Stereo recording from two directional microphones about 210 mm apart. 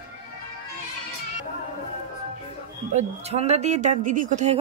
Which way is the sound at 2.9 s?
30° right (ahead or behind).